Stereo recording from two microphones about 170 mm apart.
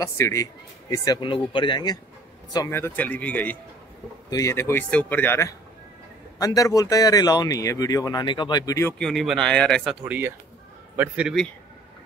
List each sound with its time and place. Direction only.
0.0 s speech: 20° left (ahead or behind)
8.9 s speech: centre (ahead or behind)